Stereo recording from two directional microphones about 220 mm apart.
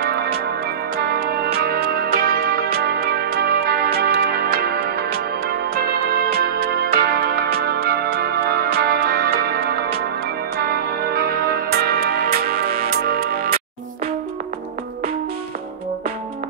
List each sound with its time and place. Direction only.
0.9 s music: 45° right (ahead or behind)